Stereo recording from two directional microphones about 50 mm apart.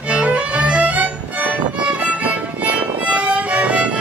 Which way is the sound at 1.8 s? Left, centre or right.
Right.